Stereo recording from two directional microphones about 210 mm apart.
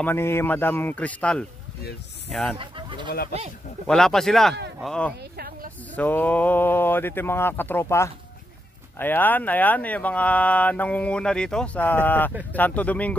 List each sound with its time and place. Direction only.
0.0 s speech: 10° left (ahead or behind)
2.5 s speech: 25° right (ahead or behind)
3.8 s speech: centre (ahead or behind)